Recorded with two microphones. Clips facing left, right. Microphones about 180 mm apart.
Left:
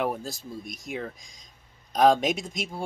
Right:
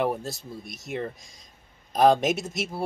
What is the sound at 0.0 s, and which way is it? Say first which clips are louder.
Speech: right 2 dB; centre (ahead or behind).